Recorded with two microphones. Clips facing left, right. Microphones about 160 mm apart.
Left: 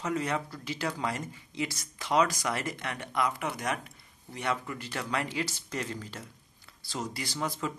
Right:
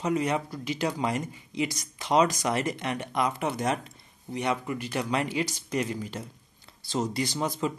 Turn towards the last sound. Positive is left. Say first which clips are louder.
# right 5 dB
turn(degrees=-20)  # may be behind; listen again after turning